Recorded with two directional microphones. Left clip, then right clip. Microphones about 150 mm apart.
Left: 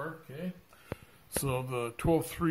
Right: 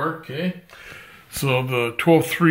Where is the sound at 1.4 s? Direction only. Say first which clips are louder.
Right 14 dB; 25° left (ahead or behind).